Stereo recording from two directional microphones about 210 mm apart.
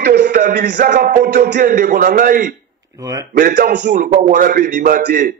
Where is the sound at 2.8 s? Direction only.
20° right (ahead or behind).